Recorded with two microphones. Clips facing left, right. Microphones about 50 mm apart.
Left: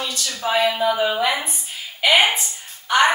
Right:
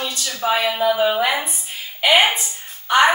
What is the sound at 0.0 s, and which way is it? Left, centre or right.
A woman's voice, centre.